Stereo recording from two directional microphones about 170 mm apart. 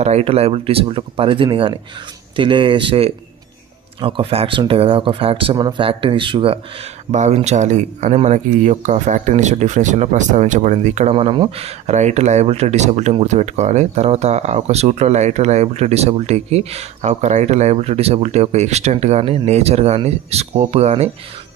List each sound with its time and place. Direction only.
0.0 s speech: 35° right (ahead or behind)
7.1 s speech: 40° right (ahead or behind)